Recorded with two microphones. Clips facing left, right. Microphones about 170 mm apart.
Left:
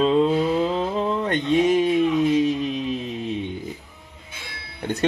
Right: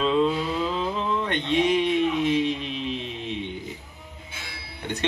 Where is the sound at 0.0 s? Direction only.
40° left (ahead or behind).